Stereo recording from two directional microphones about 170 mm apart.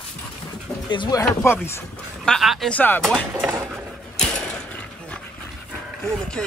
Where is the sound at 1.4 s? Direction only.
15° left (ahead or behind).